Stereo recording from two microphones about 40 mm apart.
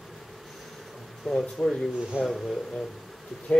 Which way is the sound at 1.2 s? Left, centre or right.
Centre.